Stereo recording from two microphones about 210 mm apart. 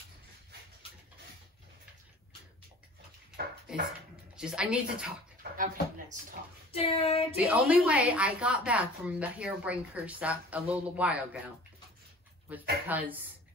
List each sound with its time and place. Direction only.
3.7 s a woman's voice: 5° right (ahead or behind)
5.4 s speech: 40° right (ahead or behind)
6.8 s child singing: 30° left (ahead or behind)
7.3 s speech: 5° right (ahead or behind)
12.5 s speech: 5° right (ahead or behind)